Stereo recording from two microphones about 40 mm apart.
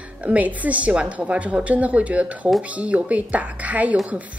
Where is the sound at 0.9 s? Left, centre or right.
Right.